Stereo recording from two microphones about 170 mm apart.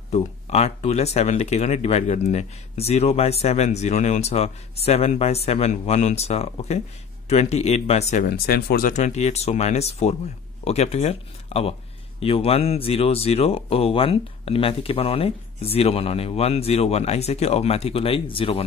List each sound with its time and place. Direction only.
0.1 s speech: 40° left (ahead or behind)
8.3 s speech: 65° left (ahead or behind)
8.9 s speech: 40° left (ahead or behind)